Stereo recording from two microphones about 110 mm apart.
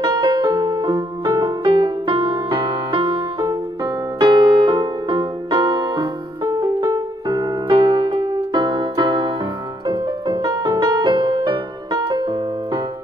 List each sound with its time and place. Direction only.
0.0 s piano: 45° right (ahead or behind)
2.5 s music: 50° right (ahead or behind)